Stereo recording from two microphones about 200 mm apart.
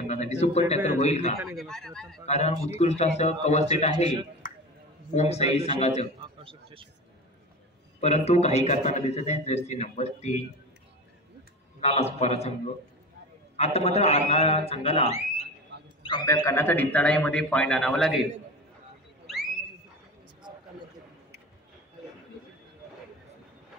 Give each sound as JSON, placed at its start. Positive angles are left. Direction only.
{"t": 0.0, "sound": "a man's voice", "side_deg": 35}
{"t": 1.6, "sound": "speech", "side_deg": 0}
{"t": 2.2, "sound": "a man's voice", "side_deg": 35}
{"t": 4.4, "sound": "a sound", "side_deg": 40}
{"t": 5.1, "sound": "a man's voice", "side_deg": 35}
{"t": 6.2, "sound": "a sound", "side_deg": -25}
{"t": 8.0, "sound": "a man's voice", "side_deg": 35}
{"t": 11.8, "sound": "a man's voice", "side_deg": 30}
{"t": 13.6, "sound": "a man's voice", "side_deg": 30}
{"t": 16.0, "sound": "a man's voice", "side_deg": 20}